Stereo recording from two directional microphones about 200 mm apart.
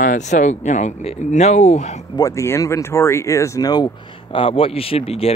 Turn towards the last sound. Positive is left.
turn(degrees=30)  # may be behind; listen again after turning